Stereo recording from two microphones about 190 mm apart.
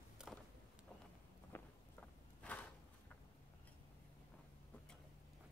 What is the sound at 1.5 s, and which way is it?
Walk, 10° left (ahead or behind).